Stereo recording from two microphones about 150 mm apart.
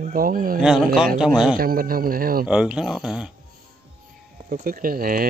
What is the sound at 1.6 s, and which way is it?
Speech, 75° right (ahead or behind).